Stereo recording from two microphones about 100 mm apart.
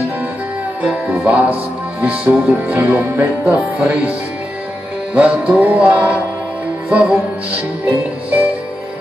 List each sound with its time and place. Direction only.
0.8 s music: 10° right (ahead or behind)
5.1 s music: 15° right (ahead or behind)